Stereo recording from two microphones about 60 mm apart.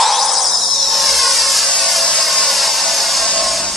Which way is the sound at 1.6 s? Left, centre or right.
Centre.